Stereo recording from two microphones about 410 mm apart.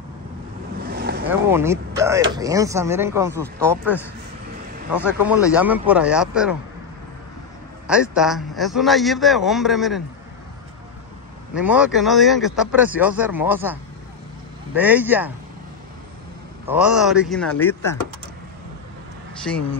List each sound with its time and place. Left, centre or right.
0.8 s boat: right
1.2 s speech: centre
4.9 s speech: centre
7.8 s speech: centre
11.5 s speech: centre
14.8 s speech: centre
16.6 s speech: centre
19.4 s speech: centre